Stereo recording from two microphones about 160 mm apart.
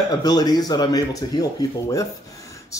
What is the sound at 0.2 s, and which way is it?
Speech, 25° left (ahead or behind).